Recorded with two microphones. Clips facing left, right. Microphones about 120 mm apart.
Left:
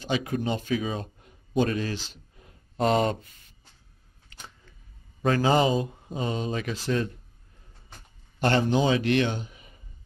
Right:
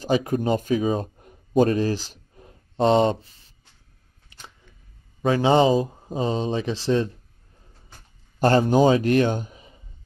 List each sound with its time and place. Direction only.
0.0 s speech: 40° right (ahead or behind)
5.4 s speech: 25° right (ahead or behind)
8.4 s speech: 40° right (ahead or behind)